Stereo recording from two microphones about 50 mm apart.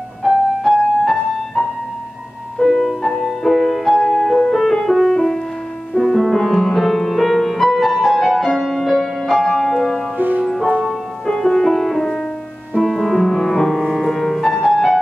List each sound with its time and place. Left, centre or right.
0.2 s music: centre
10.1 s music: right
10.4 s music: centre